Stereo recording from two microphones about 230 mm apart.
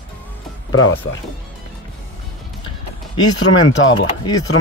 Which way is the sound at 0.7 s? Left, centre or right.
Left.